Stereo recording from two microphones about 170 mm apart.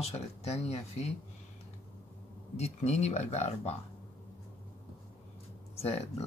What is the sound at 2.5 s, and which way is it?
Speech, 40° left (ahead or behind).